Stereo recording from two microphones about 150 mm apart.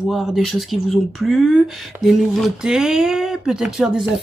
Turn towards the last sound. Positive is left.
turn(degrees=-5)  # may be behind; listen again after turning